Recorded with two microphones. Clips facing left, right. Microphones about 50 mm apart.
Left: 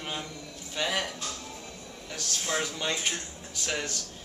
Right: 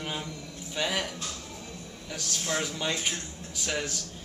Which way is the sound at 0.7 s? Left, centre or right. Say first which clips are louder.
Even; centre.